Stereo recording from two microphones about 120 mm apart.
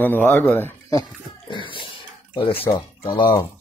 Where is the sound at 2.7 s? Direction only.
30° left (ahead or behind).